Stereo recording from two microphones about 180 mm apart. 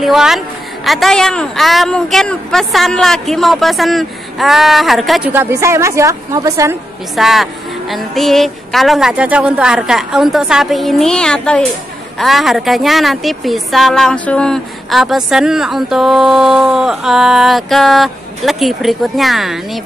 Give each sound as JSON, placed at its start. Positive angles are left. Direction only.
{"t": 0.0, "sound": "speech", "side_deg": 0}
{"t": 5.3, "sound": "a woman's voice", "side_deg": -15}
{"t": 7.2, "sound": "speech", "side_deg": 0}